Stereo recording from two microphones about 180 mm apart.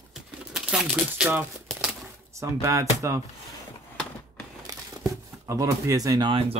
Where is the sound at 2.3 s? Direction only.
15° right (ahead or behind).